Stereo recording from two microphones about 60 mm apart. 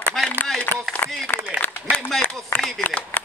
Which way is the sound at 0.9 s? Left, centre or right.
Left.